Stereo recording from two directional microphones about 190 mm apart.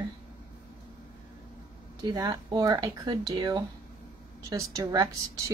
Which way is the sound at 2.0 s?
20° right (ahead or behind).